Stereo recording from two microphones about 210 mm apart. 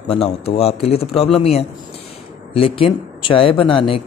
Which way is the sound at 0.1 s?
30° left (ahead or behind).